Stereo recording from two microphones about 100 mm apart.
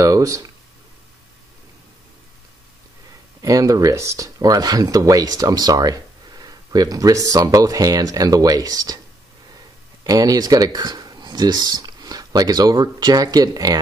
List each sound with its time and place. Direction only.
0.0 s speech: 35° right (ahead or behind)
3.4 s speech: 35° right (ahead or behind)
10.0 s speech: 40° right (ahead or behind)